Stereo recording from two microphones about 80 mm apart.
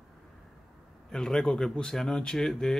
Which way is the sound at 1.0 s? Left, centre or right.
Centre.